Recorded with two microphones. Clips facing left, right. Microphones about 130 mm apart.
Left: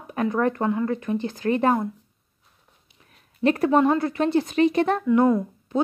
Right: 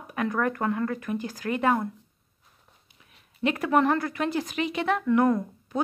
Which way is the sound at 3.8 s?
25° left (ahead or behind).